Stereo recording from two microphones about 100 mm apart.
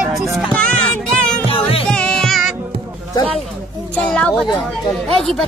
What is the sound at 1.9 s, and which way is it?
Music, 10° left (ahead or behind).